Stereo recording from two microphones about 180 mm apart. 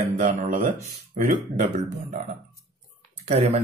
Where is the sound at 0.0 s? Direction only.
45° right (ahead or behind).